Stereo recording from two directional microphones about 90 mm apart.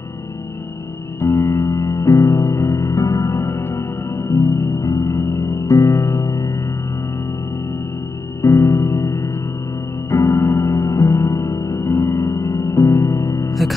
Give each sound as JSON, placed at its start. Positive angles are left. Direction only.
{"t": 1.2, "sound": "music", "side_deg": 30}
{"t": 8.4, "sound": "music", "side_deg": 30}